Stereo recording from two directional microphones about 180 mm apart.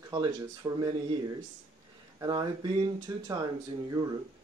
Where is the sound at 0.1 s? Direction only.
20° right (ahead or behind).